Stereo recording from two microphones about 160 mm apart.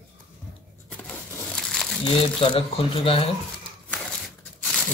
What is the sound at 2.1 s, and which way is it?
Speech, 35° left (ahead or behind).